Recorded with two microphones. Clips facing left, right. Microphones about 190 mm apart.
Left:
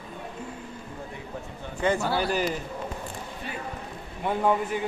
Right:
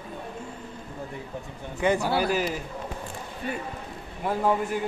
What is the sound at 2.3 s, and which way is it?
Speech, 5° right (ahead or behind).